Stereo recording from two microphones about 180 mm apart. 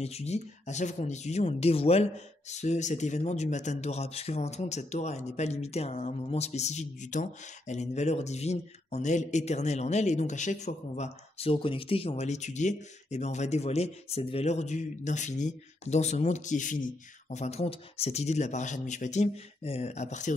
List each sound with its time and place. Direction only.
0.0 s speech: 35° left (ahead or behind)